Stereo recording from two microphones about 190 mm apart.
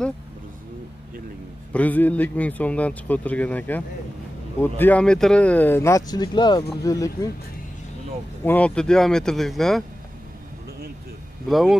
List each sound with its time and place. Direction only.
1.7 s speech: 10° left (ahead or behind)
8.5 s speech: 5° left (ahead or behind)
11.4 s speech: centre (ahead or behind)